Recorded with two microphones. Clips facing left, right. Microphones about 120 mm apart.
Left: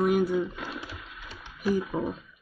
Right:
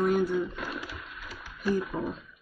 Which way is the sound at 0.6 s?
30° left (ahead or behind).